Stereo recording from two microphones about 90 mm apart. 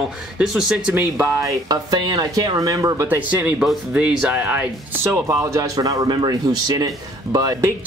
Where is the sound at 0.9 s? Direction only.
20° right (ahead or behind).